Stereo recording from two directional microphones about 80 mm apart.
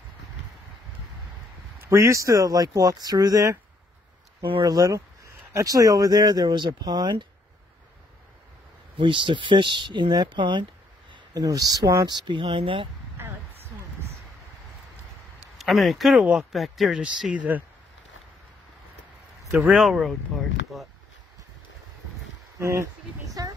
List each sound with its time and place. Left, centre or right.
1.8 s speech: right
4.6 s speech: right
8.9 s speech: right
11.3 s speech: right
12.1 s speech: right
13.2 s a sound: right
15.5 s speech: centre
16.2 s speech: centre
16.5 s speech: centre
19.5 s speech: centre
22.6 s speech: right